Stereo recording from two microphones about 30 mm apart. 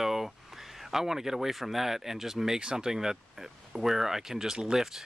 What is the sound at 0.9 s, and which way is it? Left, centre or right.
Speech, centre.